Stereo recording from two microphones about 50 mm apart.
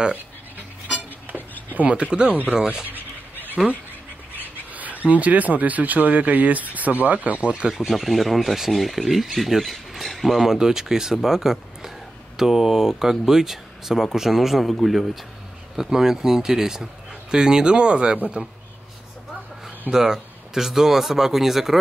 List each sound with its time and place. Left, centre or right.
1.7 s speech: right
3.6 s speech: centre
4.7 s speech: right
7.7 s speech: centre
19.9 s speech: centre